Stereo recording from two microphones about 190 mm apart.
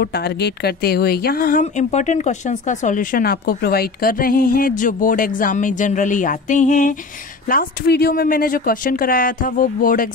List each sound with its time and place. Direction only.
0.0 s speech: 60° left (ahead or behind)